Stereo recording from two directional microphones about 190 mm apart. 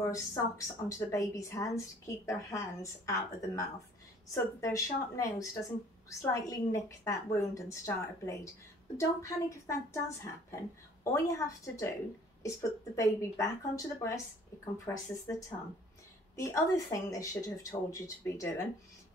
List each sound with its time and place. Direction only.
0.1 s speech: 15° left (ahead or behind)
11.1 s speech: 15° left (ahead or behind)